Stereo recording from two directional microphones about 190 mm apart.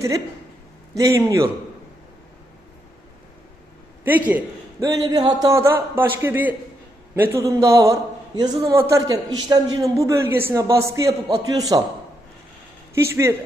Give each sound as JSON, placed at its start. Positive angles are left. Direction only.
{"t": 0.9, "sound": "a man's voice", "side_deg": -15}
{"t": 4.0, "sound": "a man's voice", "side_deg": -10}
{"t": 12.9, "sound": "a man's voice", "side_deg": -15}